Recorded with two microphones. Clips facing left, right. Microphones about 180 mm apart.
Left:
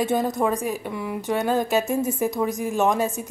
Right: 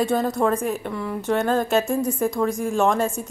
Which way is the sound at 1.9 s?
20° left (ahead or behind).